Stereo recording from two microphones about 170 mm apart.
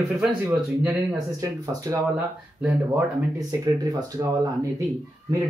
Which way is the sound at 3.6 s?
20° right (ahead or behind).